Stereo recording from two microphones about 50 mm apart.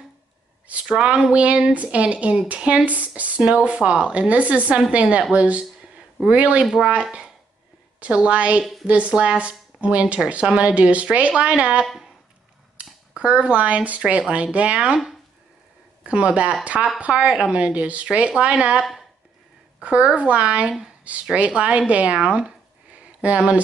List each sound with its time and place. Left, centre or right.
0.8 s speech: centre
6.6 s speech: centre
12.7 s dishes: right
14.3 s speech: right
16.0 s speech: right
19.8 s a woman's voice: right
22.9 s a sound: right